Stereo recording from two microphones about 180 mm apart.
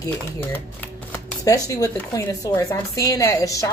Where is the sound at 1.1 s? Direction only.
20° left (ahead or behind).